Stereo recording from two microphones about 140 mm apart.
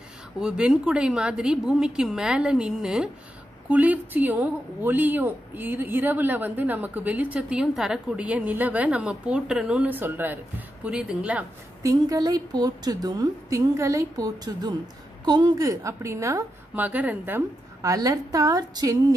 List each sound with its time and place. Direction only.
0.4 s a woman's voice: 5° right (ahead or behind)
11.8 s a woman's voice: 25° right (ahead or behind)
17.8 s a woman's voice: 25° right (ahead or behind)